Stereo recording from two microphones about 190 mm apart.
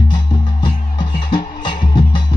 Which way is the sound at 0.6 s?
25° left (ahead or behind).